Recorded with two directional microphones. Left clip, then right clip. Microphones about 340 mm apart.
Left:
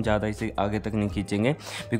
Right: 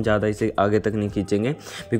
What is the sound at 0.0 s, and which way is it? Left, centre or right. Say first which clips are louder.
Speech: right 5 dB; centre.